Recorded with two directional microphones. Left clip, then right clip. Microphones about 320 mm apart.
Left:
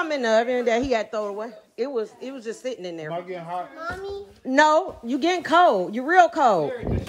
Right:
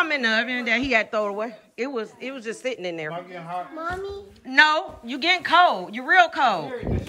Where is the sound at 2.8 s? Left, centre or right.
Left.